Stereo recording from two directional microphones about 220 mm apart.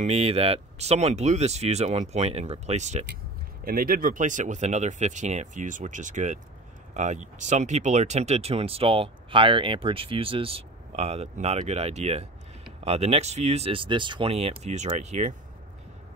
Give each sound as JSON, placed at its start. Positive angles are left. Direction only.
{"t": 0.0, "sound": "speech", "side_deg": -25}